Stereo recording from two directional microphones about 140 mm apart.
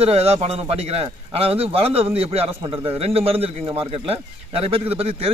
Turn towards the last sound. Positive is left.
turn(degrees=-45)  # may be behind; listen again after turning